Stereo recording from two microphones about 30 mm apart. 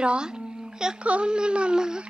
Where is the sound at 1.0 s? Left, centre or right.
Right.